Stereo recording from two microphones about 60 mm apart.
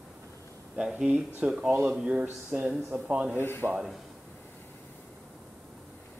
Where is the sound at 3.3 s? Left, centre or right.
Left.